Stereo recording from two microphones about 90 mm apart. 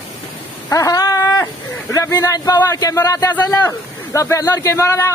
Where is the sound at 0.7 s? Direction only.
40° left (ahead or behind).